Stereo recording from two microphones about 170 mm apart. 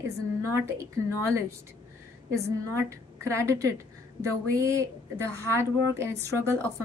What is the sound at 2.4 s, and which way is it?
A woman's voice, 15° right (ahead or behind).